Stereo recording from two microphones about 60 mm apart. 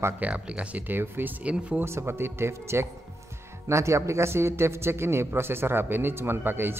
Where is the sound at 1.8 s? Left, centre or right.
Right.